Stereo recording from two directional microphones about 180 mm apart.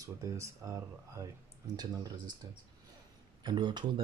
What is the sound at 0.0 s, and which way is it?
Speech, 20° right (ahead or behind).